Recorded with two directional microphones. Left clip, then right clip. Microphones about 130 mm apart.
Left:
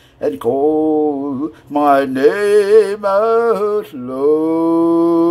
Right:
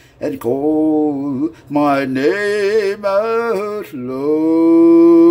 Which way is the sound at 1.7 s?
10° right (ahead or behind).